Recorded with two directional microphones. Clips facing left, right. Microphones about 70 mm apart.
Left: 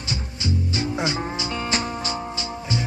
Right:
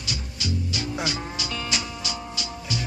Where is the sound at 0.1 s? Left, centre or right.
Left.